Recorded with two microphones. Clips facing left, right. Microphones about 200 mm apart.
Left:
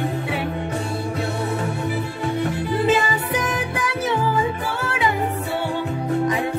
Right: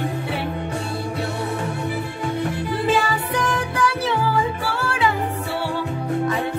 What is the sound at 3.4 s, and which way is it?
Music, 20° left (ahead or behind).